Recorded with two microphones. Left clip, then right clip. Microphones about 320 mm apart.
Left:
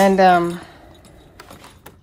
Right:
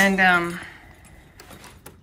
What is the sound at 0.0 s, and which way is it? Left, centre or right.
Speech, centre.